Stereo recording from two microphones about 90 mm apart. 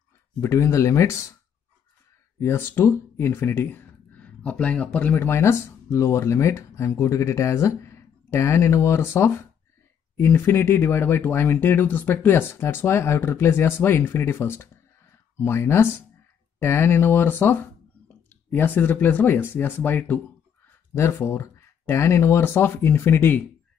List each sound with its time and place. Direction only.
0.4 s speech: 35° left (ahead or behind)
2.4 s speech: 25° left (ahead or behind)